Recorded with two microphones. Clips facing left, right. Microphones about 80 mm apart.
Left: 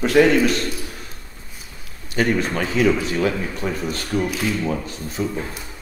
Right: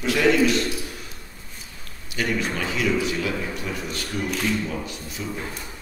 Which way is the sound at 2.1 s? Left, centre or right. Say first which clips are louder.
Left 5 dB; left.